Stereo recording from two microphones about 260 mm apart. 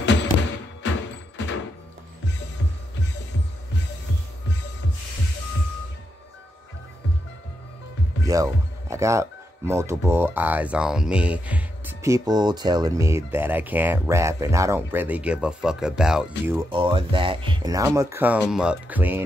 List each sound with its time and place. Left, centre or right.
0.0 s music: left
8.3 s speech: centre
16.6 s speech: centre